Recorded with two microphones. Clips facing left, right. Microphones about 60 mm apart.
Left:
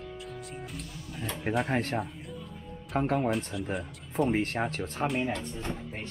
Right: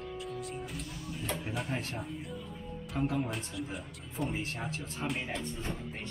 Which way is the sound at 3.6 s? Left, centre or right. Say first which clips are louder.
Left 7 dB; left.